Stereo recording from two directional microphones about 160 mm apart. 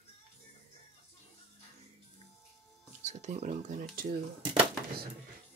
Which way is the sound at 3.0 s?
45° right (ahead or behind).